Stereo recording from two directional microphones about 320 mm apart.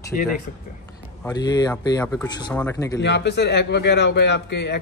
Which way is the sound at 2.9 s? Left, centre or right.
Left.